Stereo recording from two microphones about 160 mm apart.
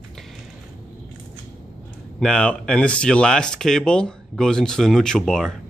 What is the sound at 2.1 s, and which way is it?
Speech, 5° left (ahead or behind).